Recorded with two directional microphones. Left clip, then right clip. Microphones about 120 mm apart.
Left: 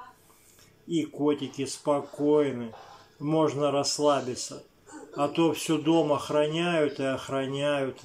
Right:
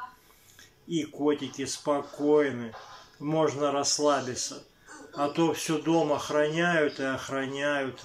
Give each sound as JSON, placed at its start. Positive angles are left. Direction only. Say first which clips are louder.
{"t": 0.8, "sound": "speech", "louder": "left 1 dB", "side_deg": 20}